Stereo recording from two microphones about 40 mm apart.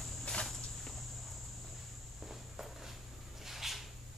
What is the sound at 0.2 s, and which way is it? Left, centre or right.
Walk, left.